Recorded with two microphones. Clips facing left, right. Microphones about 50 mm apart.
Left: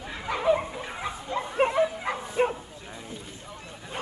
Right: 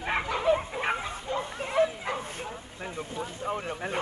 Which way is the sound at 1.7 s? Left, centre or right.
Centre.